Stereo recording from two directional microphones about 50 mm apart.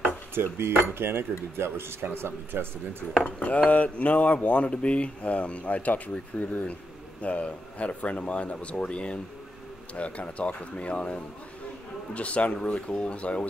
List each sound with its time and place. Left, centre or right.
0.0 s cutlery: right
3.3 s speech: left